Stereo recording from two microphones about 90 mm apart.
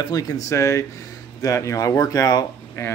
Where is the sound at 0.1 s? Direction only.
40° left (ahead or behind).